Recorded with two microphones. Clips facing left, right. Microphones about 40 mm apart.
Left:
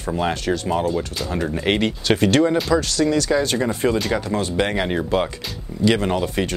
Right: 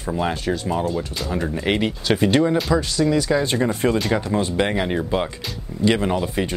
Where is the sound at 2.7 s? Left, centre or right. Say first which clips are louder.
Left 1 dB; centre.